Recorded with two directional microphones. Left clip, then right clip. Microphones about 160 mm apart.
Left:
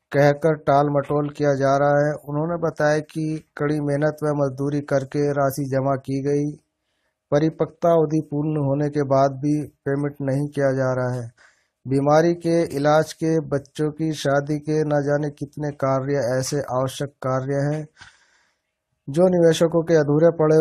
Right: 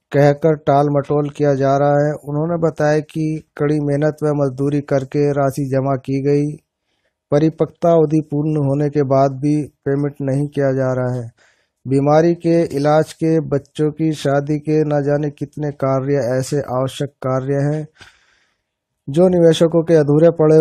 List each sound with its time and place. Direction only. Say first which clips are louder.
0.1 s speech: right 4 dB; 35° right (ahead or behind)
19.1 s speech: right 4 dB; 35° right (ahead or behind)